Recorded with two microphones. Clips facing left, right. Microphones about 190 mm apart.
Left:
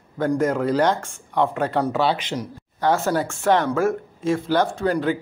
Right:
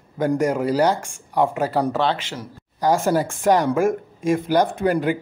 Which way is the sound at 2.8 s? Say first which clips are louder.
Right 2 dB; 10° right (ahead or behind).